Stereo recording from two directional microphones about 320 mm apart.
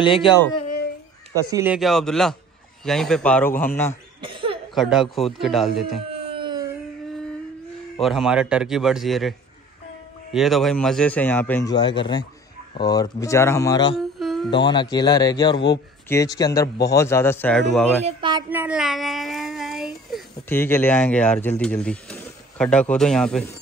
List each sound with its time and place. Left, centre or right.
0.0 s speech: centre
1.3 s a man's voice: centre
4.2 s cough: centre
4.7 s a man's voice: centre
6.0 s a sound: centre
8.0 s a man's voice: centre
10.3 s a man's voice: centre
13.9 s humming: centre
14.5 s speech: centre
18.0 s child singing: centre